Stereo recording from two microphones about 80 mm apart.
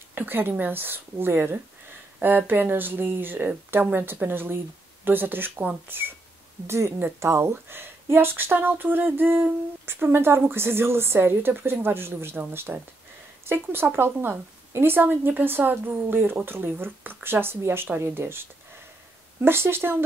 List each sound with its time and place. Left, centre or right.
0.1 s speech: right